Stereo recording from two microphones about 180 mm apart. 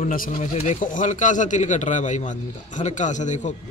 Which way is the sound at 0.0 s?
45° left (ahead or behind).